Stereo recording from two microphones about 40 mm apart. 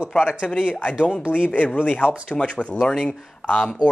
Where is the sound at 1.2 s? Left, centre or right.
Right.